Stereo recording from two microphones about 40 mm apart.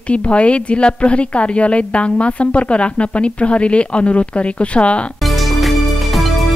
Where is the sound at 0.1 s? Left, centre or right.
Left.